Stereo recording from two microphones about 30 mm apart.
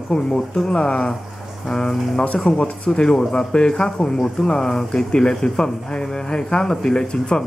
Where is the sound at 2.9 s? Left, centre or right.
Centre.